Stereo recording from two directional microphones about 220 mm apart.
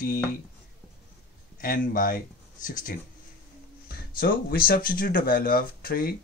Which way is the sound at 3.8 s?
45° left (ahead or behind).